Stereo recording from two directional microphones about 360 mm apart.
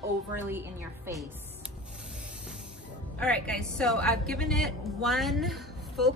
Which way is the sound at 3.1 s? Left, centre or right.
Centre.